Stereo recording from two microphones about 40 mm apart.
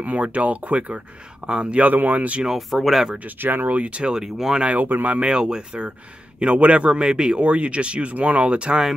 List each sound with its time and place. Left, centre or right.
0.0 s speech: right
1.4 s speech: centre
1.8 s speech: right
2.7 s speech: centre
3.3 s speech: right
3.6 s speech: right
4.2 s speech: centre
4.7 s speech: right
5.2 s speech: right
5.7 s speech: right